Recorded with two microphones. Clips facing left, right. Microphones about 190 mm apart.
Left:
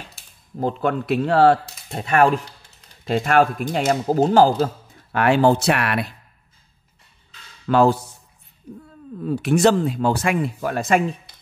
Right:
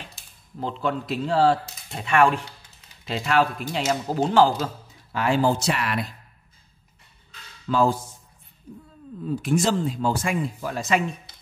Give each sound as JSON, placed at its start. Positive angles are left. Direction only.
{"t": 0.6, "sound": "speech", "side_deg": 50}
{"t": 1.9, "sound": "speech", "side_deg": 40}
{"t": 5.1, "sound": "speech", "side_deg": 65}
{"t": 7.6, "sound": "speech", "side_deg": 70}
{"t": 9.2, "sound": "speech", "side_deg": 70}